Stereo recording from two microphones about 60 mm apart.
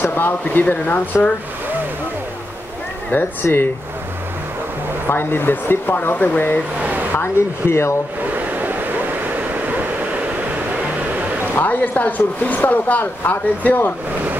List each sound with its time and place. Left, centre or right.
0.0 s speech: left
3.4 s speech: left
5.0 s speech: left
7.2 s speech: left
8.2 s waves: right
11.5 s speech: left